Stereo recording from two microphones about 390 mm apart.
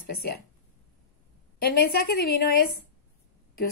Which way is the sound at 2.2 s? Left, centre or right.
Left.